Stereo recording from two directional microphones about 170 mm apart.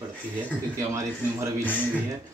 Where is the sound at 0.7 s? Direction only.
15° right (ahead or behind).